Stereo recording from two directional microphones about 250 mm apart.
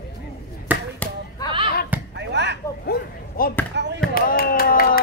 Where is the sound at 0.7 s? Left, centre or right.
Centre.